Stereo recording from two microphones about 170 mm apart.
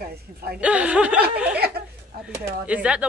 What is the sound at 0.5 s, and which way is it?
Speech, 5° right (ahead or behind).